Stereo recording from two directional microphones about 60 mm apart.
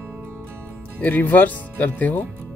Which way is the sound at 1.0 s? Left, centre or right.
Left.